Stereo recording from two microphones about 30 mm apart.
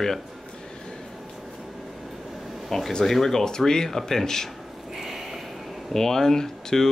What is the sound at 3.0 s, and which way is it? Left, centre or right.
Speech, centre.